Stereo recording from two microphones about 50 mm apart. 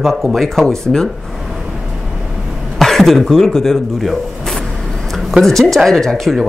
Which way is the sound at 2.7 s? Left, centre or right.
Centre.